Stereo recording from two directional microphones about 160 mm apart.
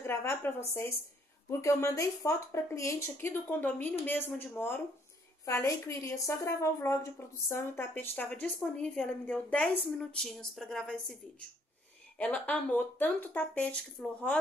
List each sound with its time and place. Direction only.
0.0 s a woman's voice: 15° left (ahead or behind)
12.2 s speech: 10° left (ahead or behind)